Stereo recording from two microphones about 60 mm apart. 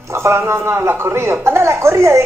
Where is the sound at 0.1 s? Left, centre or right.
Right.